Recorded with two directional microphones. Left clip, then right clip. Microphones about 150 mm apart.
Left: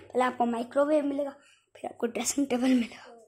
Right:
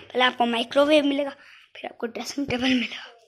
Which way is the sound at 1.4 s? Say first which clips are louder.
Right 3 dB; 15° left (ahead or behind).